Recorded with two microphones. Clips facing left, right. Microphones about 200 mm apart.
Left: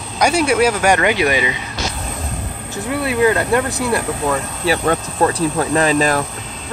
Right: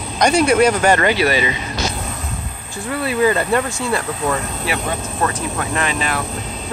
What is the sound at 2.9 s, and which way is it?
Speech, centre (ahead or behind).